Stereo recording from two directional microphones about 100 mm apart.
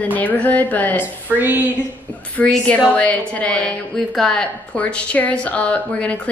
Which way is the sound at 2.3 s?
10° left (ahead or behind).